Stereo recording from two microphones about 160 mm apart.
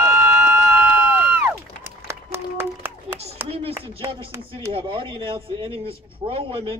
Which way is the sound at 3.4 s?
35° right (ahead or behind).